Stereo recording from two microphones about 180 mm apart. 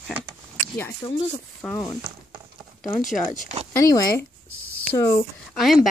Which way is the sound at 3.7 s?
20° left (ahead or behind).